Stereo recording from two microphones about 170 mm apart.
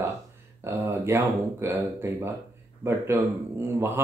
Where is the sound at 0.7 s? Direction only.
15° right (ahead or behind).